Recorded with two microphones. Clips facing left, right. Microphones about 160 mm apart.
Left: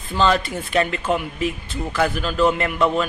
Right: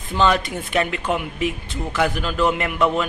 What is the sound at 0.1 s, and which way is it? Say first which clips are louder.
A man's voice: even; 15° right (ahead or behind).